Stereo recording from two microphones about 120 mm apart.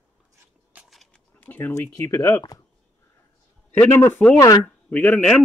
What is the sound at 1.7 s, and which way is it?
Speech, 25° left (ahead or behind).